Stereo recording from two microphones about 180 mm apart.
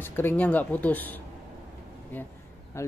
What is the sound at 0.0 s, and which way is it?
Speech, 10° left (ahead or behind).